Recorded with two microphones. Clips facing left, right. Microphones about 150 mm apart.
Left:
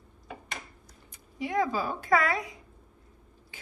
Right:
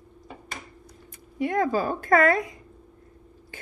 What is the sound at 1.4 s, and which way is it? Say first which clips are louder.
A woman's voice: right 5 dB; 55° right (ahead or behind).